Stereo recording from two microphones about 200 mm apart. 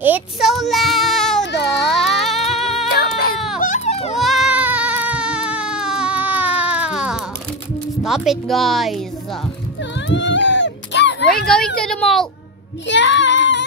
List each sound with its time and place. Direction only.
0.0 s child singing: 5° right (ahead or behind)
1.4 s baby cry: 60° left (ahead or behind)
1.9 s music: centre (ahead or behind)
2.9 s baby cry: 50° left (ahead or behind)
3.6 s music: 35° left (ahead or behind)
4.2 s a sound: centre (ahead or behind)
8.0 s speech: centre (ahead or behind)
9.9 s a sound: 60° left (ahead or behind)
11.4 s a sound: 5° left (ahead or behind)
12.8 s child singing: 65° left (ahead or behind)